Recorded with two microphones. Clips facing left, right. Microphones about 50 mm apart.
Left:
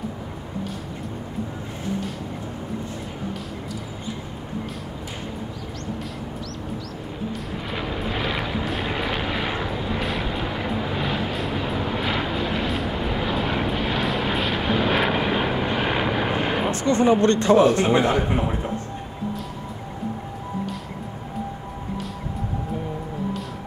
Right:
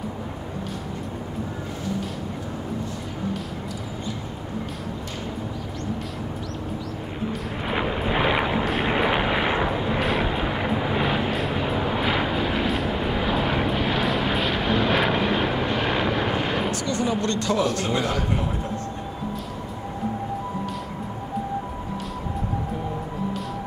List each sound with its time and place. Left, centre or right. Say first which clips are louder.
7.6 s eruption: right 5 dB; right
8.8 s vehicle: right 4 dB; right; by 16.7 s centre
16.7 s a man's voice: left 6 dB; left